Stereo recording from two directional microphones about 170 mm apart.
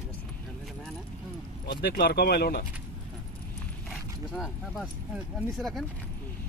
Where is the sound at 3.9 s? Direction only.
Centre (ahead or behind).